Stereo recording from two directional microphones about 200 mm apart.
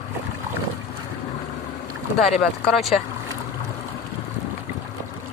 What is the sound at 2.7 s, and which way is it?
Speech, centre (ahead or behind).